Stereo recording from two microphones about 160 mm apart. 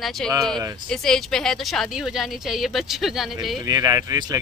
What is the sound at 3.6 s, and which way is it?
Speech, 25° right (ahead or behind).